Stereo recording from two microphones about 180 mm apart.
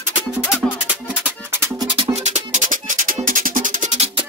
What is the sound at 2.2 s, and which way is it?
Music, 45° right (ahead or behind).